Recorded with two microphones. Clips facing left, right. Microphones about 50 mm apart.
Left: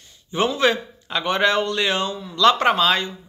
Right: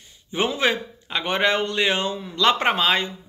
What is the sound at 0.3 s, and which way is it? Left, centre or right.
A man's voice, centre.